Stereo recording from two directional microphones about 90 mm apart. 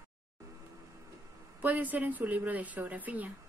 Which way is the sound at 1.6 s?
20° right (ahead or behind).